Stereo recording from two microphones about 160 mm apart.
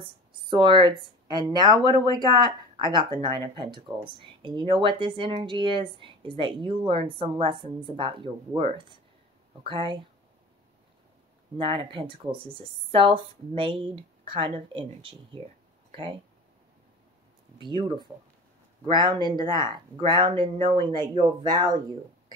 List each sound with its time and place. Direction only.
0.0 s speech: 30° right (ahead or behind)
11.5 s speech: 30° right (ahead or behind)
17.6 s speech: 30° right (ahead or behind)